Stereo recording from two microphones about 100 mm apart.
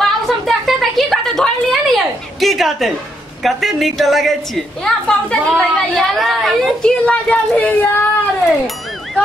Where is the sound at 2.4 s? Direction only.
Centre (ahead or behind); by 8.0 s 15° left (ahead or behind).